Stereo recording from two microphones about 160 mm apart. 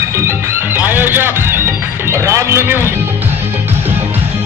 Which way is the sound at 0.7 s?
10° right (ahead or behind).